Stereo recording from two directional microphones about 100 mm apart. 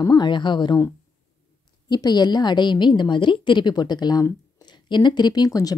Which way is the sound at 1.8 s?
45° left (ahead or behind).